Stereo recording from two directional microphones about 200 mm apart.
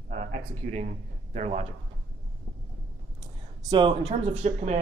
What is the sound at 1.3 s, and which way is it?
Speech, 35° right (ahead or behind).